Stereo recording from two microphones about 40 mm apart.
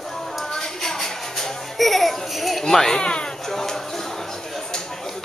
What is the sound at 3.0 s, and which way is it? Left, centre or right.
Speech, left.